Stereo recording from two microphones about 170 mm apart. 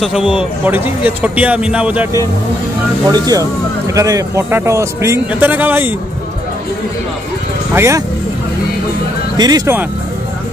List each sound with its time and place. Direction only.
0.0 s speech: 5° right (ahead or behind)
3.1 s speech: 20° right (ahead or behind)
7.7 s speech: 15° right (ahead or behind)
9.4 s speech: 25° right (ahead or behind)